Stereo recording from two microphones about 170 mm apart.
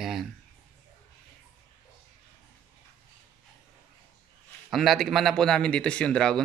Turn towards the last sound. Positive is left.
turn(degrees=5)  # may be behind; listen again after turning